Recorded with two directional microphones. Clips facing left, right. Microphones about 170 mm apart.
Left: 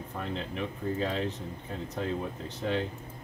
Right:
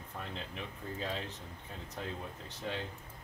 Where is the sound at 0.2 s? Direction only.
80° left.